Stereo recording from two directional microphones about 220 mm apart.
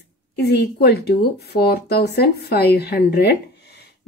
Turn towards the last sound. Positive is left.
turn(degrees=50)  # may be behind; listen again after turning